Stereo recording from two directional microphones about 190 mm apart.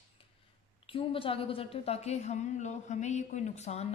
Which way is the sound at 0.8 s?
30° left (ahead or behind).